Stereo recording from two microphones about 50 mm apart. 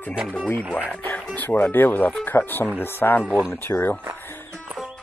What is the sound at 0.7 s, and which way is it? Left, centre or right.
Speech, right.